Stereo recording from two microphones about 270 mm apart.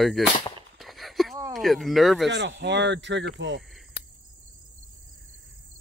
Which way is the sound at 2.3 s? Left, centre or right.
Right.